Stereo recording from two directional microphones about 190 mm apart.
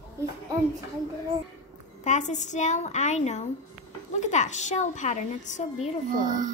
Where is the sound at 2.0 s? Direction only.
40° left (ahead or behind).